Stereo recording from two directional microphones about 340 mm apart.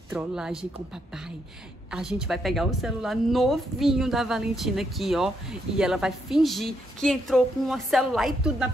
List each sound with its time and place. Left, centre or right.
0.1 s a woman's voice: centre
1.9 s a woman's voice: centre